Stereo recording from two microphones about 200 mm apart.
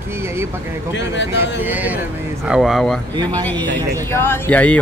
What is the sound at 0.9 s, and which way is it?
Speech, 65° left (ahead or behind).